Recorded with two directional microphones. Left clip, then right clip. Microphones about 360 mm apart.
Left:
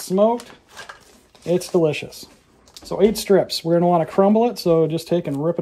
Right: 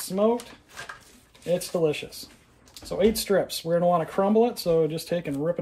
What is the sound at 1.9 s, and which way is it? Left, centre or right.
Speech, left.